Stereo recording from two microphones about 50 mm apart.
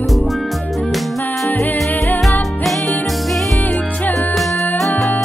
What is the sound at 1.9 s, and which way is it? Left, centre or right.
Music, left.